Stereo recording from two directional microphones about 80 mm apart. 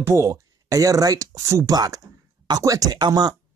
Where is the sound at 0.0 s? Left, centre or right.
Right.